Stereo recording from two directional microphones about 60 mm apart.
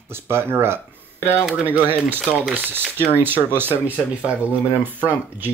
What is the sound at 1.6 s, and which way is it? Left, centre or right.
Speech, right.